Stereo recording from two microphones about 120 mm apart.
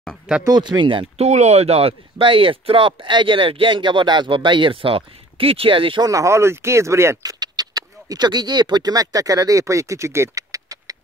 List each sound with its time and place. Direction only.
0.4 s speech: 35° right (ahead or behind)
1.1 s speech: 65° right (ahead or behind); by 6.0 s 45° right (ahead or behind)
6.0 s speech: 25° right (ahead or behind)